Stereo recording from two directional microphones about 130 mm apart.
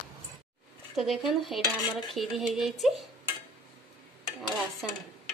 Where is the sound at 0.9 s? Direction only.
Centre (ahead or behind).